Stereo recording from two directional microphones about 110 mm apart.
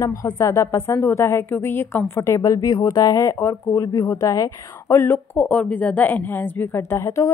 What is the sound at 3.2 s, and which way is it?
Speech, 25° left (ahead or behind).